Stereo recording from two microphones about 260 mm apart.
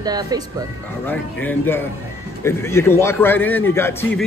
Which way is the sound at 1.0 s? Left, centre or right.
Centre.